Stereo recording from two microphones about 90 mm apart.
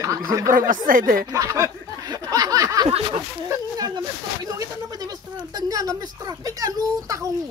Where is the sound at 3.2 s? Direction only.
40° right (ahead or behind).